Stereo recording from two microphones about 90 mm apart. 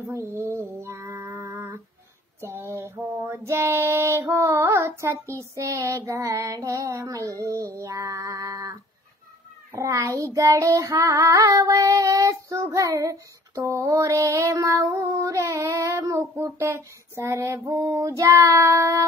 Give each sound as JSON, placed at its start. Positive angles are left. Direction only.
{"t": 0.0, "sound": "female singing", "side_deg": -30}
{"t": 1.2, "sound": "a sound", "side_deg": -35}
{"t": 3.2, "sound": "female singing", "side_deg": -30}
{"t": 4.2, "sound": "child singing", "side_deg": -40}
{"t": 4.5, "sound": "child singing", "side_deg": -30}